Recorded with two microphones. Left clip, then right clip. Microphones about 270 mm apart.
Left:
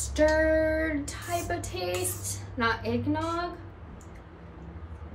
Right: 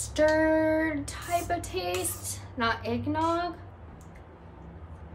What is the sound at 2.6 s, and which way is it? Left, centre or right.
Speech, centre.